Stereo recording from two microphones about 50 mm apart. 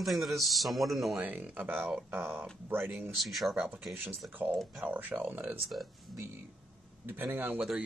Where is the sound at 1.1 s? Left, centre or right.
Right.